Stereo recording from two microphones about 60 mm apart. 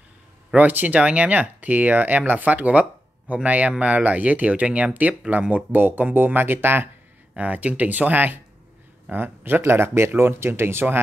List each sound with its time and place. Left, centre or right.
0.6 s speech: right
7.3 s speech: right